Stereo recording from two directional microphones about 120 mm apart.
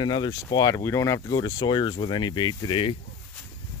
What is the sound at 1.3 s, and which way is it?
Speech, 40° left (ahead or behind).